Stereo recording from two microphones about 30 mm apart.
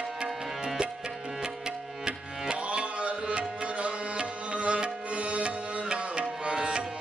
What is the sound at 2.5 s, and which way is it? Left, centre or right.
Tabla, right.